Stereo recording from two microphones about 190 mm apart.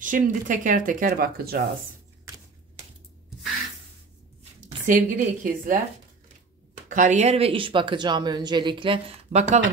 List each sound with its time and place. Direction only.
0.0 s speech: 45° right (ahead or behind)
4.6 s speech: 45° right (ahead or behind)
6.9 s speech: 40° right (ahead or behind)